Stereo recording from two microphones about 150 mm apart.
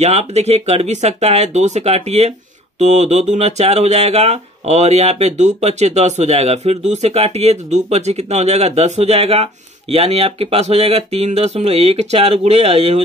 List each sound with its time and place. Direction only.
0.0 s speech: 45° right (ahead or behind)